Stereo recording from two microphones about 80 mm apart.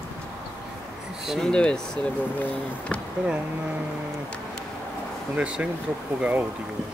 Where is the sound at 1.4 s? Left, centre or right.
Centre.